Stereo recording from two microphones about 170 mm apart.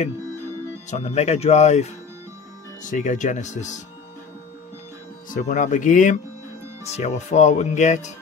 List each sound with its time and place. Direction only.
0.8 s speech: 40° left (ahead or behind)
5.3 s speech: 50° left (ahead or behind)